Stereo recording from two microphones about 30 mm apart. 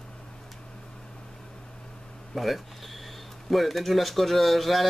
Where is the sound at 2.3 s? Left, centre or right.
Centre.